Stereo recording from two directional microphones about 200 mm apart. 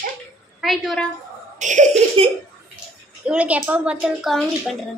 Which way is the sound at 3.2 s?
5° right (ahead or behind).